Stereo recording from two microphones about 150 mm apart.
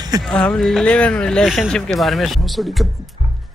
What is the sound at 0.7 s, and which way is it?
Speech, 10° left (ahead or behind).